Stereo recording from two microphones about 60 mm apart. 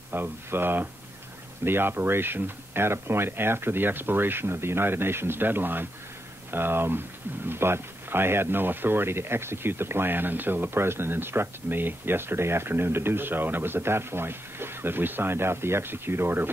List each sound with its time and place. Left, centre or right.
0.1 s speech: right